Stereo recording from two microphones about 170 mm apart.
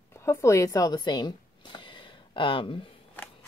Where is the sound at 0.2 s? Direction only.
15° left (ahead or behind).